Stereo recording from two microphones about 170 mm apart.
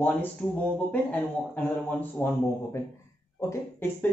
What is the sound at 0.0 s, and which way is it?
Speech, 10° left (ahead or behind).